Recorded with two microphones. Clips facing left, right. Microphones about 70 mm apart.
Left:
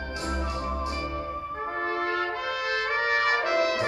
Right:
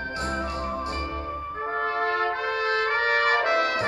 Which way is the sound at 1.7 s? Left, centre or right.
Right.